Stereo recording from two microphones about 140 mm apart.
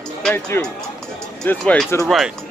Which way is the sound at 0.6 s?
15° left (ahead or behind).